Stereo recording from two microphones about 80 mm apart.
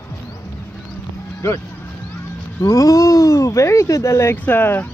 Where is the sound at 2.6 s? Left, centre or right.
Left.